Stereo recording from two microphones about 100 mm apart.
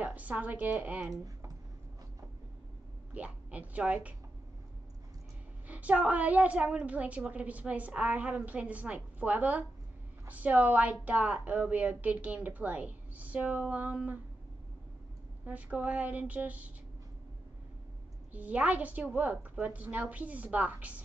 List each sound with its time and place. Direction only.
0.0 s a woman's voice: 15° right (ahead or behind)
1.1 s speech: 35° right (ahead or behind)
3.2 s a woman's voice: 15° right (ahead or behind)
5.7 s a woman's voice: 15° right (ahead or behind)
15.4 s a woman's voice: 15° right (ahead or behind)
18.3 s a woman's voice: 15° right (ahead or behind)